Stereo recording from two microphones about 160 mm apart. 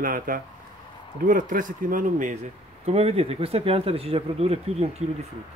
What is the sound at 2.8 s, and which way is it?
Speech, 40° right (ahead or behind).